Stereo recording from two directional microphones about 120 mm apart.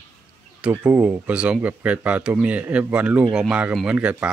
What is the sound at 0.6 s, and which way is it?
Speech, 15° right (ahead or behind).